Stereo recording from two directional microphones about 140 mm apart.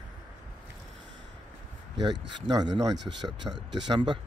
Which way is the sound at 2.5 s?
30° right (ahead or behind).